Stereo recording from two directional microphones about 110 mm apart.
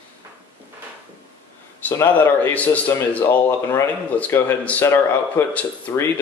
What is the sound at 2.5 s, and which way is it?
A man's voice, 15° left (ahead or behind).